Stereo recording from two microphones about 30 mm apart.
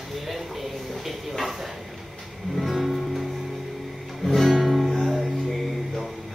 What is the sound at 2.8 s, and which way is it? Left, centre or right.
Music, centre.